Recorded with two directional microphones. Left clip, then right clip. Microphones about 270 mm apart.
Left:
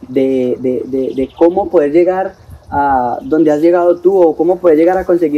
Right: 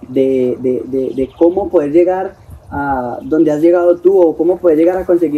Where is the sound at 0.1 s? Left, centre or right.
Centre.